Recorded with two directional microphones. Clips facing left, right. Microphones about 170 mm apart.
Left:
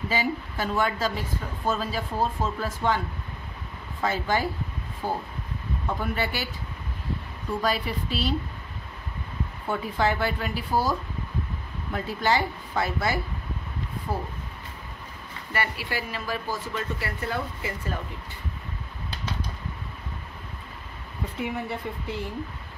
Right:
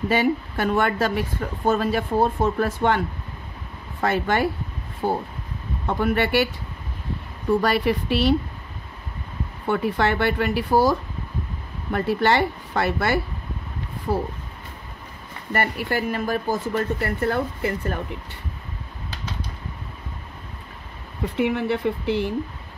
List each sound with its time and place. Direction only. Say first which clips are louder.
0.1 s speech: right 7 dB; 60° right (ahead or behind)
4.0 s speech: right 5 dB; 65° right (ahead or behind)
5.9 s speech: right 7 dB; 70° right (ahead or behind)
7.6 s speech: right 6 dB; 65° right (ahead or behind)
9.7 s speech: right 4 dB; 70° right (ahead or behind)
15.5 s speech: right 6 dB; 50° right (ahead or behind)
21.4 s speech: right 9 dB; 75° right (ahead or behind)